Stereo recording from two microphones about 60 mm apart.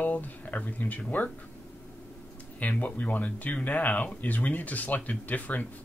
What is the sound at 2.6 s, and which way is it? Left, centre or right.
Speech, left.